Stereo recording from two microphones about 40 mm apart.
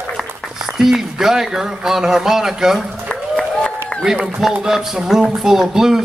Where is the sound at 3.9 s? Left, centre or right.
Left.